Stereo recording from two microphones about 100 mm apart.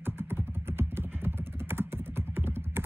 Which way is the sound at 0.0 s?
25° right (ahead or behind).